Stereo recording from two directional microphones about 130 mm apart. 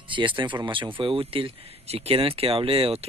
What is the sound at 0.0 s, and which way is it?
Speech, 40° right (ahead or behind).